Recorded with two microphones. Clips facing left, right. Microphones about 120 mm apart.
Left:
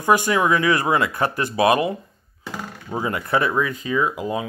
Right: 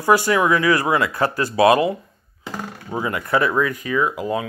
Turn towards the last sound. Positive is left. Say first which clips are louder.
# right 1 dB
turn(degrees=20)  # may be behind; listen again after turning